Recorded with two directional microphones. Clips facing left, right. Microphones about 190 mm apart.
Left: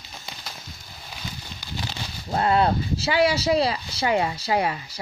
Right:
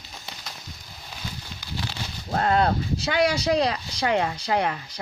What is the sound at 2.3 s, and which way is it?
Speech, 5° left (ahead or behind).